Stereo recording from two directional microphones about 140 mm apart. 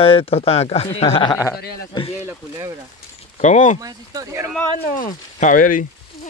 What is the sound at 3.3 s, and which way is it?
Speech, 60° left (ahead or behind).